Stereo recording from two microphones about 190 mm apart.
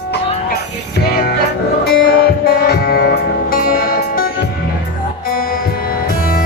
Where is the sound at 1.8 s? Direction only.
55° left (ahead or behind).